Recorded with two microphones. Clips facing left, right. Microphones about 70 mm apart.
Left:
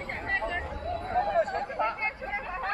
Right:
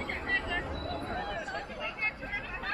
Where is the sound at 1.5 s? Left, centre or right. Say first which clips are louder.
Left 8 dB; left.